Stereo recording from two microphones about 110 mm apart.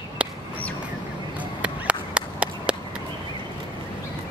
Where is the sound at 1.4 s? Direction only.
10° right (ahead or behind).